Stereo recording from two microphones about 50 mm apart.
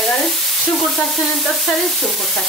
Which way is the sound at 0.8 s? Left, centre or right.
Centre.